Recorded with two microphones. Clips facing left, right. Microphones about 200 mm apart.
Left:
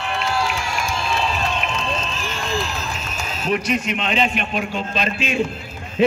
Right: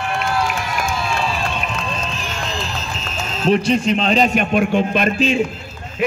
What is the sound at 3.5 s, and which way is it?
A man's voice, 30° right (ahead or behind).